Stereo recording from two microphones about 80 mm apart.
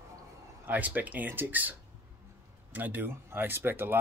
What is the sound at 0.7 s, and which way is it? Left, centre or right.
Speech, right.